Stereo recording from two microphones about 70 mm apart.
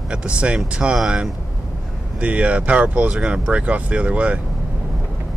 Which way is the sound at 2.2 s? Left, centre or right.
Centre.